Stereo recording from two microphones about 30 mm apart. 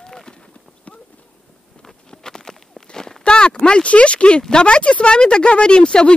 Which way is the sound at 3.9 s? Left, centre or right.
Left.